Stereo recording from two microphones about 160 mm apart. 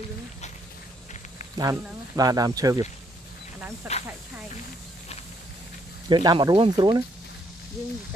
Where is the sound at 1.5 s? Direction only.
25° right (ahead or behind).